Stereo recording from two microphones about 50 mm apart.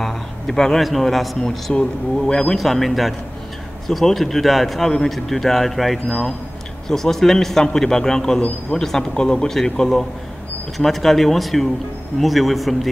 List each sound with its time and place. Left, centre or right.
0.0 s a sound: centre
0.8 s speech: centre
1.4 s a man's voice: centre
2.5 s a man's voice: centre